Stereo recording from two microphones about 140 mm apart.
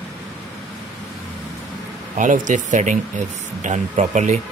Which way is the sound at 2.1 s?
65° right (ahead or behind).